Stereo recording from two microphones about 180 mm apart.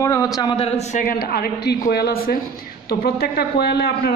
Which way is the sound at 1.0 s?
55° left (ahead or behind).